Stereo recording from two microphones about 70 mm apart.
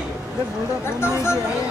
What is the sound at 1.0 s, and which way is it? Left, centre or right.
Speech, left.